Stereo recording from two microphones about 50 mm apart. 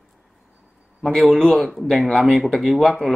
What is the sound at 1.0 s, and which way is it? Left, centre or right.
Speech, centre.